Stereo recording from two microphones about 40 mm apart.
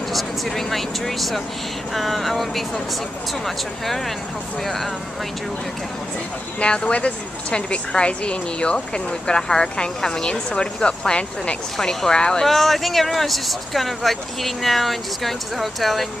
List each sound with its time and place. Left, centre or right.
0.1 s speech: centre
6.6 s a woman's voice: left
11.7 s speech: centre
12.4 s speech: centre